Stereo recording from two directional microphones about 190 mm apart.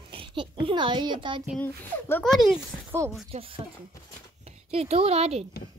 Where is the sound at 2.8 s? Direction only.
15° right (ahead or behind).